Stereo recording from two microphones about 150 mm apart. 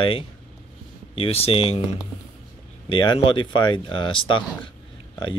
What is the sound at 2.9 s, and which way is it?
Speech, 35° left (ahead or behind).